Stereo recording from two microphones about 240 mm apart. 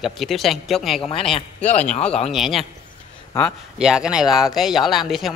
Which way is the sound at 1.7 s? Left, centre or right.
Left.